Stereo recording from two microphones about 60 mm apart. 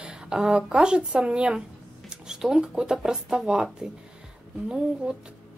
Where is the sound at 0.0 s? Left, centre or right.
Centre.